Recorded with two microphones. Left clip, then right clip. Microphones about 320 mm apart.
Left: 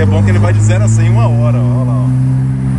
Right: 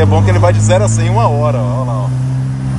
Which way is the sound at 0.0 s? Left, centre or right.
Centre.